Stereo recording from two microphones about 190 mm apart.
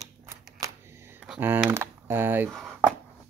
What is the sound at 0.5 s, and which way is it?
Computer keyboard, 15° right (ahead or behind).